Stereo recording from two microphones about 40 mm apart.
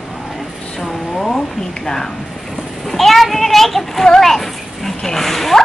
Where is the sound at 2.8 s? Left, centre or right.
Centre.